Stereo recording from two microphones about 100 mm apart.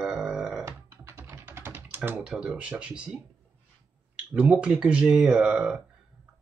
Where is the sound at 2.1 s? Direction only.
10° right (ahead or behind).